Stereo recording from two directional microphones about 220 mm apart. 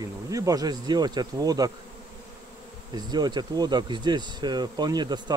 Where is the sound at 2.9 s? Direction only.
20° right (ahead or behind).